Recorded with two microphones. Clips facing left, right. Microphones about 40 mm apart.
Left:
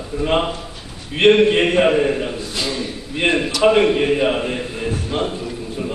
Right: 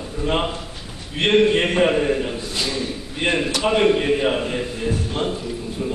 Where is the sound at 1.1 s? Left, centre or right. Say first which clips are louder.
Left 4 dB; left.